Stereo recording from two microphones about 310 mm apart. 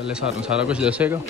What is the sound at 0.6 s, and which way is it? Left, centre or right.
Speech, centre.